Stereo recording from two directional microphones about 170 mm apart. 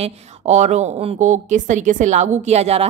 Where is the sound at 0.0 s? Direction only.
40° right (ahead or behind).